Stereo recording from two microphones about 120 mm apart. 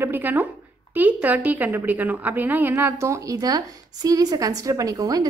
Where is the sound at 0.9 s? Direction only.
15° right (ahead or behind).